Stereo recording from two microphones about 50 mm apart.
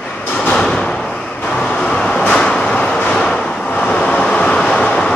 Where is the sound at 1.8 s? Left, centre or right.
Centre.